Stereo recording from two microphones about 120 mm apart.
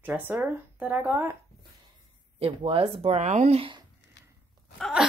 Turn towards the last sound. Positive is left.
turn(degrees=0)  # may be behind; listen again after turning